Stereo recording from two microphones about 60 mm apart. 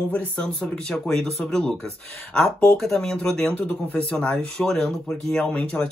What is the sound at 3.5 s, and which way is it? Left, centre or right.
A man's voice, left.